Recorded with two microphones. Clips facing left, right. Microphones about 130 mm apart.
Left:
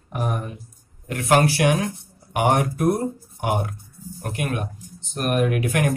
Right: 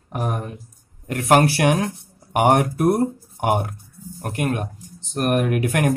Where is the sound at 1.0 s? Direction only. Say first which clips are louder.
Right 2 dB; 50° right (ahead or behind).